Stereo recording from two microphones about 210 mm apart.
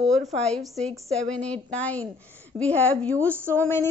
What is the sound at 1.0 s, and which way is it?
A woman's voice, 5° left (ahead or behind).